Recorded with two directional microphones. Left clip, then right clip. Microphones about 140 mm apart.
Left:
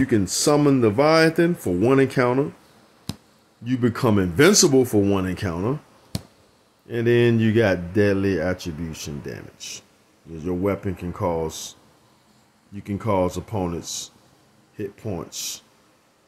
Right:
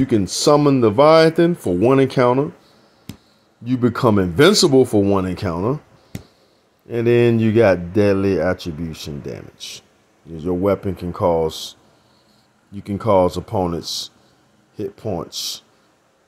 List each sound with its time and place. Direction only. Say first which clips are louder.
0.0 s speech: right 4 dB; centre (ahead or behind)
3.6 s speech: right 5 dB; 5° right (ahead or behind)
6.9 s speech: right 4 dB; 10° right (ahead or behind)
10.5 s speech: right 6 dB; 15° right (ahead or behind)
12.9 s speech: right 7 dB; 15° right (ahead or behind)
13.5 s speech: right 7 dB; 30° right (ahead or behind)
13.7 s speech: right 6 dB; 15° left (ahead or behind)